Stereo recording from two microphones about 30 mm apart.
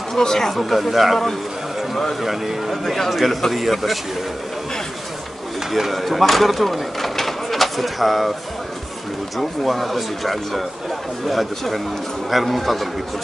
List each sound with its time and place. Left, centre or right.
0.2 s speech: centre
0.5 s speech: centre
3.1 s speech: centre
5.7 s speech: centre
9.4 s speech: centre